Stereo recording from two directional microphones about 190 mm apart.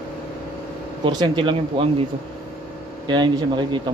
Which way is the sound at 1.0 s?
25° right (ahead or behind).